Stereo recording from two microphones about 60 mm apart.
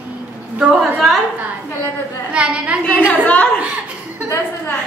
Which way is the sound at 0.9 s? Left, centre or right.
Centre.